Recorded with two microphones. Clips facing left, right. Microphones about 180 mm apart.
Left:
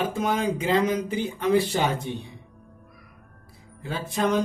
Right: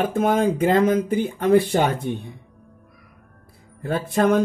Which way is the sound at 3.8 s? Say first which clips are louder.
Right 6 dB; 55° right (ahead or behind).